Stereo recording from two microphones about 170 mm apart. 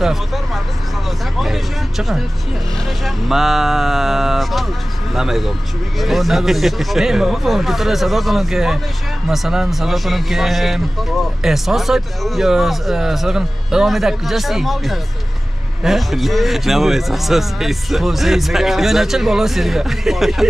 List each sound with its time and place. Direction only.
0.0 s speech: centre (ahead or behind)
1.4 s speech: centre (ahead or behind)